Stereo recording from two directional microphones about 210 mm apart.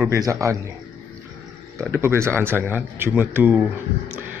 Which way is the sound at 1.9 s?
10° right (ahead or behind).